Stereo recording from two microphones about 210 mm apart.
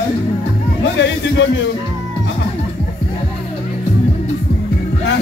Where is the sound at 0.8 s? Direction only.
60° left (ahead or behind).